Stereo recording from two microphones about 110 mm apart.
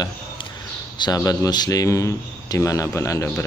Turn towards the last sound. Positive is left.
turn(degrees=25)  # may be behind; listen again after turning